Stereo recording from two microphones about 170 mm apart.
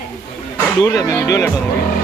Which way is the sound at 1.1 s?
20° left (ahead or behind).